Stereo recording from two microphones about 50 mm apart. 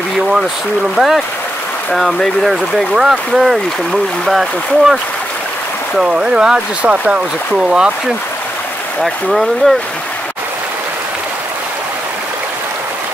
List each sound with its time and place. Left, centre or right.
0.9 s speech: centre
6.0 s speech: centre
9.0 s speech: centre